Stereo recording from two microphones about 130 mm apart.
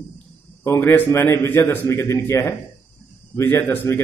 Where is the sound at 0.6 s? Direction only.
20° left (ahead or behind).